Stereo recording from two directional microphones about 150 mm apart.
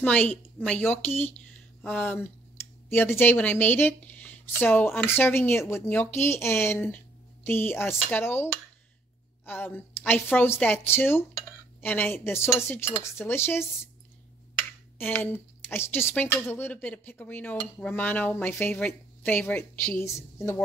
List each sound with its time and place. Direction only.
0.0 s speech: 10° left (ahead or behind)
9.5 s speech: 15° left (ahead or behind)
14.5 s a sound: 10° left (ahead or behind)
16.4 s speech: 15° left (ahead or behind)